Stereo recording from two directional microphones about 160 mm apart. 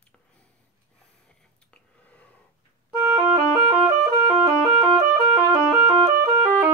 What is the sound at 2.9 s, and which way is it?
Music, 10° right (ahead or behind).